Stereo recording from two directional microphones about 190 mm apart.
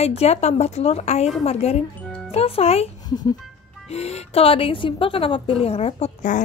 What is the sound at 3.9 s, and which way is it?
Speech, 35° left (ahead or behind).